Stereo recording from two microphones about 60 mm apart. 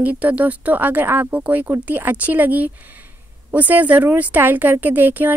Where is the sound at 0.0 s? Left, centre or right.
Right.